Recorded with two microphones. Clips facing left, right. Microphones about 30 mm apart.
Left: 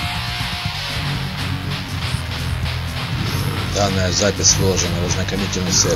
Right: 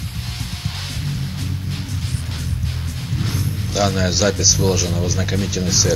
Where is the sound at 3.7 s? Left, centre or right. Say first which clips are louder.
Right 1 dB; centre.